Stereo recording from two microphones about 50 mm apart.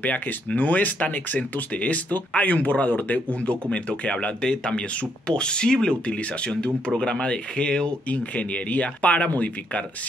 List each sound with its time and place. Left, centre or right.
0.0 s speech: left